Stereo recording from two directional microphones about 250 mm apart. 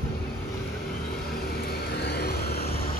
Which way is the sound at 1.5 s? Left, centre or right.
Left.